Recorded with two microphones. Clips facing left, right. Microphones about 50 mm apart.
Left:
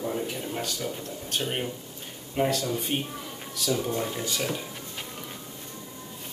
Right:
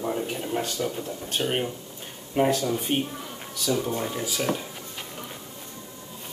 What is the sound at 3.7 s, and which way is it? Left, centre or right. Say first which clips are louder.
Speech: right 1 dB; centre.